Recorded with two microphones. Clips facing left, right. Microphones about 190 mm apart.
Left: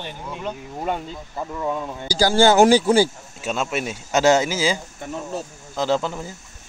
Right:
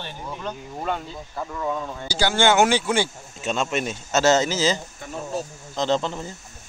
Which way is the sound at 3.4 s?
5° left (ahead or behind).